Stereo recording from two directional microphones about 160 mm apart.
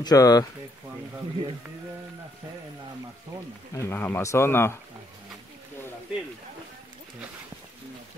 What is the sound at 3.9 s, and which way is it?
Speech, 15° left (ahead or behind).